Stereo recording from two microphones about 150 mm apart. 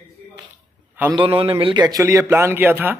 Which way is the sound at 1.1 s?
35° right (ahead or behind).